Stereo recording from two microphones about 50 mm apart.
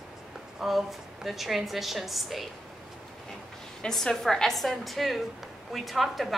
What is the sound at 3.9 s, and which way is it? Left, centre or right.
A woman's voice, centre.